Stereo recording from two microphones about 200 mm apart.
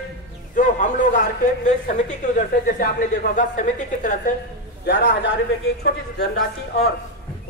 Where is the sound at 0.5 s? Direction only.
40° left (ahead or behind).